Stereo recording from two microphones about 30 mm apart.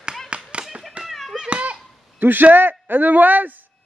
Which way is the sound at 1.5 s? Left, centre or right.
Right.